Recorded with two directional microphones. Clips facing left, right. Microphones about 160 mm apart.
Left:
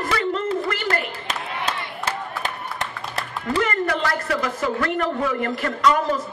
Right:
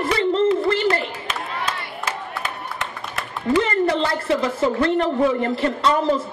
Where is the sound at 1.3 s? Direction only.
30° left (ahead or behind).